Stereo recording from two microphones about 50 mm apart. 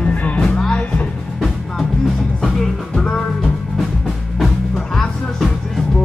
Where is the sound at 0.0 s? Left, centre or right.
Left.